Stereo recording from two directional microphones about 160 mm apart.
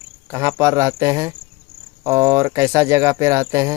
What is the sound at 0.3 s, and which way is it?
Speech, 15° right (ahead or behind).